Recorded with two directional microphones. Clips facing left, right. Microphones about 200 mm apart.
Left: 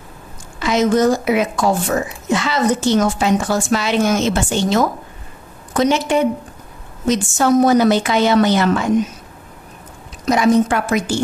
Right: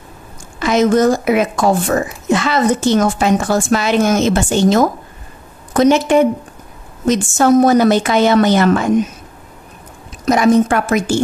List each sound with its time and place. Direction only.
0.6 s speech: 50° right (ahead or behind)
10.2 s speech: 50° right (ahead or behind)